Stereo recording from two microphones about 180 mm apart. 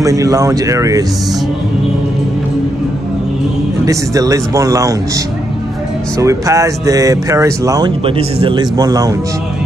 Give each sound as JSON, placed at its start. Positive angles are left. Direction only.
{"t": 0.0, "sound": "a man's voice", "side_deg": -20}
{"t": 3.8, "sound": "speech", "side_deg": -20}
{"t": 6.1, "sound": "speech", "side_deg": -15}
{"t": 8.0, "sound": "a man's voice", "side_deg": -30}